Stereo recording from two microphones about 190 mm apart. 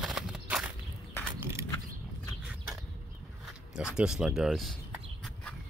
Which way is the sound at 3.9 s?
5° right (ahead or behind).